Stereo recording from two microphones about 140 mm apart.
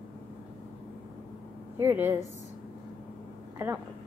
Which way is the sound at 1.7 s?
15° right (ahead or behind).